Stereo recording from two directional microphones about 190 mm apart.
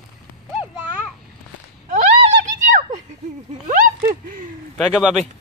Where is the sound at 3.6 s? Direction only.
45° right (ahead or behind).